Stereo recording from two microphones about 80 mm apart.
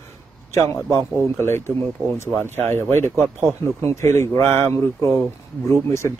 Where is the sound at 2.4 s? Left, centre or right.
Left.